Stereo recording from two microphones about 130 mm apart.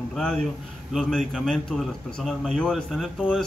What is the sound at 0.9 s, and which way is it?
A man's voice, centre (ahead or behind).